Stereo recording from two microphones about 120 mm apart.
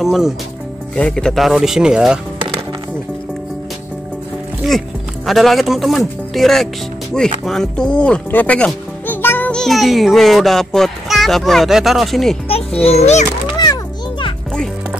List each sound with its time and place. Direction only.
0.0 s speech: centre (ahead or behind)
4.6 s speech: centre (ahead or behind)
12.8 s a child's voice: 65° left (ahead or behind)